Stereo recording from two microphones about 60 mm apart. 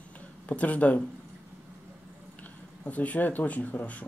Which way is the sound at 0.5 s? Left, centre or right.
Left.